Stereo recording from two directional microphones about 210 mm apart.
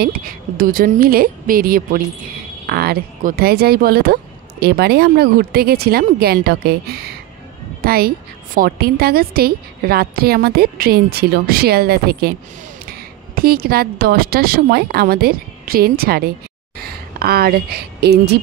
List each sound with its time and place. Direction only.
0.0 s a woman's voice: 45° right (ahead or behind)